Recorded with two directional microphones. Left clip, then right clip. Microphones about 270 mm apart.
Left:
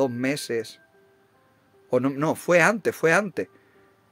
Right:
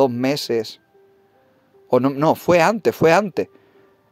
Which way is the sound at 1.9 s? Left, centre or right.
Centre.